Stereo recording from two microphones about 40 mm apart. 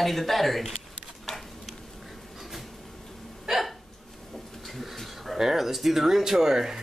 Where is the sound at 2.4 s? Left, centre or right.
Centre.